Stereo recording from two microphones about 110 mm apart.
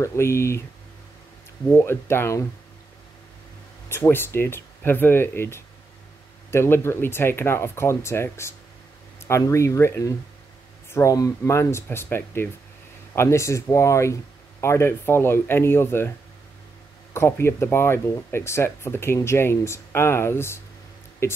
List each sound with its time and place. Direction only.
0.0 s speech: 25° left (ahead or behind)
1.7 s speech: 20° left (ahead or behind)
3.9 s speech: 20° left (ahead or behind)
17.1 s speech: 25° left (ahead or behind)